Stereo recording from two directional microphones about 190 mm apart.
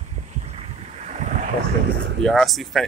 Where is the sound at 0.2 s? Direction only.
35° right (ahead or behind).